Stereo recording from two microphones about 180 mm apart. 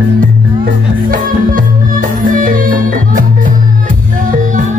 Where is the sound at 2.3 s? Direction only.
50° right (ahead or behind).